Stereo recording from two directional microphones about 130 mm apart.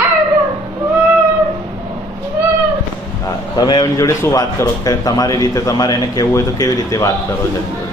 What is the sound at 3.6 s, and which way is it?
A man's voice, 35° left (ahead or behind).